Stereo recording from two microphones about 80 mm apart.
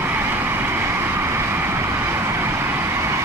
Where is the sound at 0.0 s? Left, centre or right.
Right.